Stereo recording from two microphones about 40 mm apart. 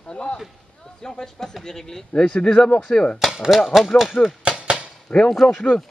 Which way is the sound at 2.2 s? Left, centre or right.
Left.